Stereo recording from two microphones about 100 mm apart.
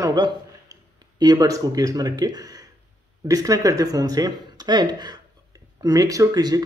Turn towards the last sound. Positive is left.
turn(degrees=-40)  # may be behind; listen again after turning